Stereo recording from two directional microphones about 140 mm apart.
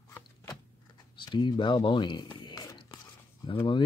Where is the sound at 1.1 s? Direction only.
35° left (ahead or behind).